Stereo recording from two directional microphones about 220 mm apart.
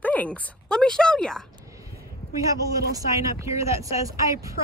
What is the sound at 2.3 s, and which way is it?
Speech, 15° right (ahead or behind).